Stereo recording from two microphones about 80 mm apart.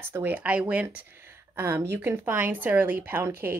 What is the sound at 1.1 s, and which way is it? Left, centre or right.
A woman's voice, right.